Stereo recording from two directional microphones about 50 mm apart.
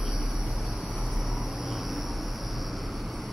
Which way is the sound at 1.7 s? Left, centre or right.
Centre.